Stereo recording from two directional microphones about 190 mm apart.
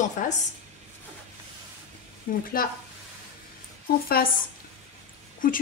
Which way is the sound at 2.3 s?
45° left (ahead or behind).